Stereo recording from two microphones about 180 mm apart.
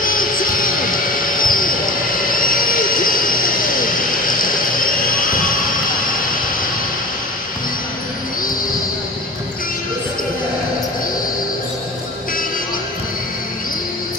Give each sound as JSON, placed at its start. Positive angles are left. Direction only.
{"t": 0.0, "sound": "music", "side_deg": 50}